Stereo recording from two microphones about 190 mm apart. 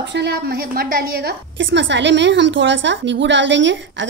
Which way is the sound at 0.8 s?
50° right (ahead or behind).